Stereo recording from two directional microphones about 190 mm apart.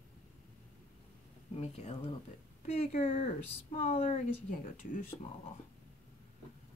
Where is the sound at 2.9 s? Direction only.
40° left (ahead or behind).